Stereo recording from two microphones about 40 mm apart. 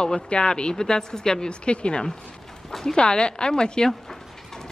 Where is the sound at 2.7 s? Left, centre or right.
Centre.